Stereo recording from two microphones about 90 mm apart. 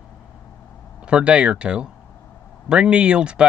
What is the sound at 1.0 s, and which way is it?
Speech, 10° right (ahead or behind).